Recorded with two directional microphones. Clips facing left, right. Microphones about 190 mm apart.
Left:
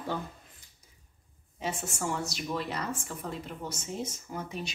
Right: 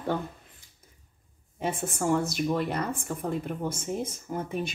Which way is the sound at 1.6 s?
55° right (ahead or behind).